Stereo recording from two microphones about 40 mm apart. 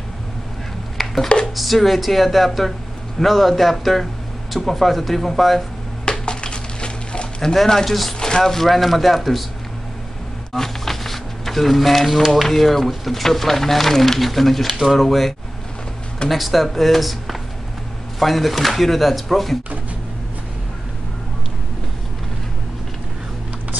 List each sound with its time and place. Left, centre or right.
0.9 s a sound: centre
1.4 s speech: centre
6.2 s a sound: left
7.5 s speech: centre
10.5 s music: centre
12.3 s speech: centre
14.7 s speech: centre
15.0 s speech: centre